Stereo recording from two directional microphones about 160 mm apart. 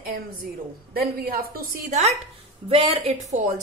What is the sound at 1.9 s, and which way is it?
A woman's voice, 45° right (ahead or behind).